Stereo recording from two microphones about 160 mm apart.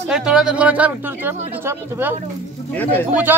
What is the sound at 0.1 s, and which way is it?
Speech, 5° right (ahead or behind).